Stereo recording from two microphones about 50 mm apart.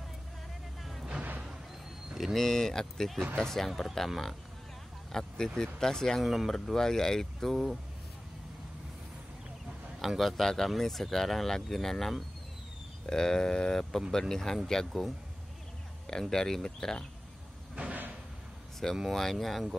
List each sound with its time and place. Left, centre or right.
2.1 s speech: centre
5.1 s speech: centre
6.2 s speech: centre
6.5 s speech: centre
9.9 s speech: centre
16.1 s speech: centre
17.7 s door: right
18.8 s speech: centre